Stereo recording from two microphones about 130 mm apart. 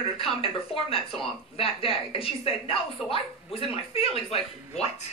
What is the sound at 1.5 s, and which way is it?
Speech, 45° left (ahead or behind).